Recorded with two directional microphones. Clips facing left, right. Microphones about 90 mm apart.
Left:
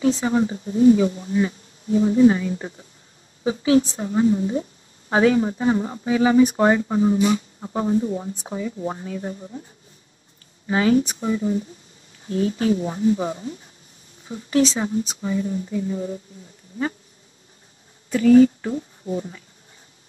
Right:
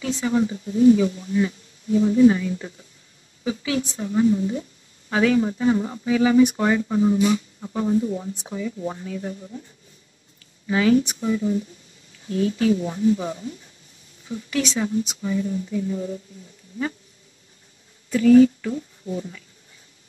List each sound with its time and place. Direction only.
0.0 s speech: 35° left (ahead or behind)
10.7 s speech: 35° left (ahead or behind)
18.1 s a woman's voice: 35° left (ahead or behind)